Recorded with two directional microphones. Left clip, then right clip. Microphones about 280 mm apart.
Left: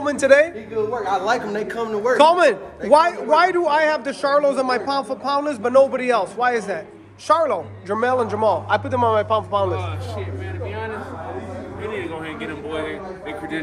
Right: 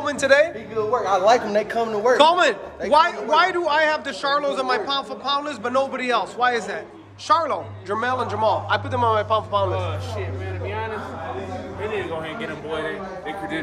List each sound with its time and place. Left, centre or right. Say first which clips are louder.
0.0 s a woman's voice: left 3 dB; centre
1.3 s speech: right 4 dB; right
2.1 s a man's voice: left 4 dB; centre